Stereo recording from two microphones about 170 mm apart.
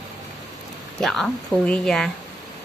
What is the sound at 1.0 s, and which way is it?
A woman's voice, centre (ahead or behind).